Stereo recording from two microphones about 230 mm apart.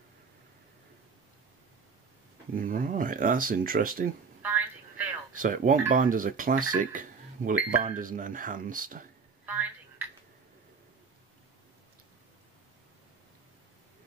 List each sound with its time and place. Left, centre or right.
2.5 s speech: right
4.4 s telephone: centre
5.3 s speech: right
9.5 s a sound: centre